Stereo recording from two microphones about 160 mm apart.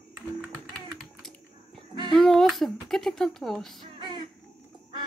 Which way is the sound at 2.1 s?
Centre (ahead or behind).